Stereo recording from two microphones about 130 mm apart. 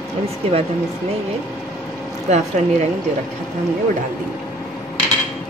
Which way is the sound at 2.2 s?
60° right (ahead or behind).